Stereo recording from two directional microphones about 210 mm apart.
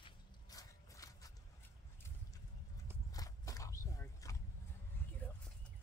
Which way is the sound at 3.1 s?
15° left (ahead or behind).